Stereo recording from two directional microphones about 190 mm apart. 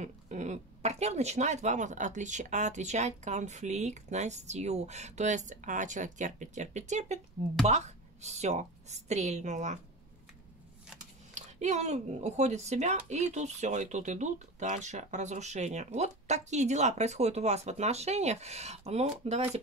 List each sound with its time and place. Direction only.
0.0 s speech: 40° right (ahead or behind)
11.3 s speech: 35° right (ahead or behind)